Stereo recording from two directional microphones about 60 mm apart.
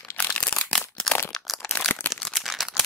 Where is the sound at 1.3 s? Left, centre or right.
Centre.